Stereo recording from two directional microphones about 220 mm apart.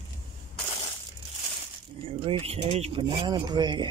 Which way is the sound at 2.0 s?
25° right (ahead or behind).